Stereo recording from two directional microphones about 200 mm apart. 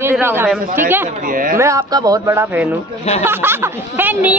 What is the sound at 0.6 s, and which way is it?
Speech, 45° right (ahead or behind).